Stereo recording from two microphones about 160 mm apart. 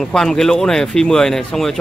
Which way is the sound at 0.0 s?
Centre (ahead or behind).